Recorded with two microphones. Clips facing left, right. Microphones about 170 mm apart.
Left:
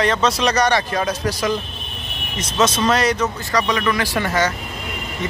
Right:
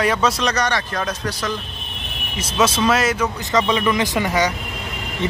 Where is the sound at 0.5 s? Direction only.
10° left (ahead or behind).